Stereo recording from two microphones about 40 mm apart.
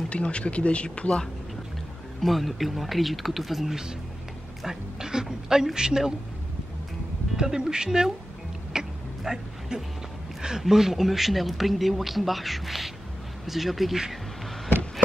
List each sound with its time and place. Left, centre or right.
0.1 s speech: left
2.2 s a woman's voice: centre
7.3 s speech: centre
8.7 s a sound: centre
10.6 s speech: centre